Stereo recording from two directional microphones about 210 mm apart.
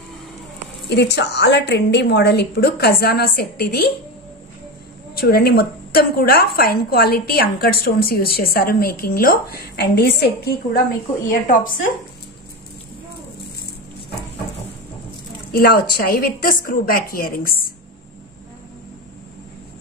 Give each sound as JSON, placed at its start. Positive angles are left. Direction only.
{"t": 0.8, "sound": "a woman's voice", "side_deg": 55}
{"t": 5.1, "sound": "a woman's voice", "side_deg": 45}
{"t": 15.5, "sound": "a woman's voice", "side_deg": 45}